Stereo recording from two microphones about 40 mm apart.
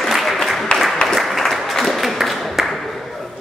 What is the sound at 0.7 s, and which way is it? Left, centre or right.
Applause, left.